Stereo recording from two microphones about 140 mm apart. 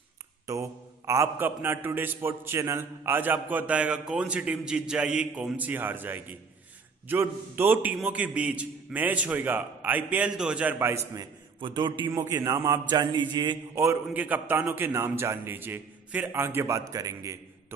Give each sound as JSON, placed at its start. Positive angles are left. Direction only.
{"t": 0.5, "sound": "a man's voice", "side_deg": -20}
{"t": 11.6, "sound": "a man's voice", "side_deg": -35}
{"t": 12.1, "sound": "a man's voice", "side_deg": -20}
{"t": 13.7, "sound": "a man's voice", "side_deg": -15}